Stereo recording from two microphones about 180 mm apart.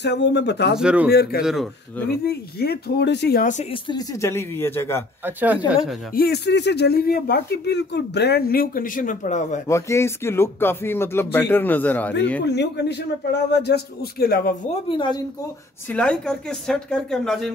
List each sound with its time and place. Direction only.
0.0 s speech: 70° left (ahead or behind)
0.7 s speech: 5° right (ahead or behind)
1.1 s speech: 60° left (ahead or behind)
1.4 s speech: centre (ahead or behind)
2.0 s speech: 60° left (ahead or behind)
3.7 s speech: 25° left (ahead or behind)
5.2 s speech: 10° right (ahead or behind)
6.1 s speech: 65° left (ahead or behind); by 9.6 s 45° left (ahead or behind)
9.7 s speech: 15° left (ahead or behind)
12.4 s speech: 70° left (ahead or behind)
14.9 s a woman's voice: 25° left (ahead or behind)
15.9 s speech: 5° left (ahead or behind)